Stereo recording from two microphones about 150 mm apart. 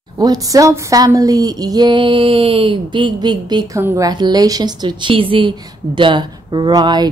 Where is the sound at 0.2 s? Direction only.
25° right (ahead or behind).